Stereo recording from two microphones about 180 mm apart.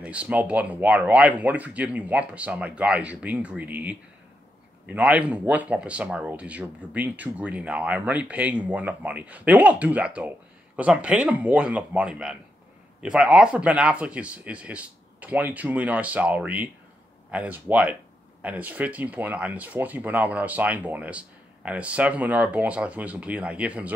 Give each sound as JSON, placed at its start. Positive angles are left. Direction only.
{"t": 0.0, "sound": "speech", "side_deg": -5}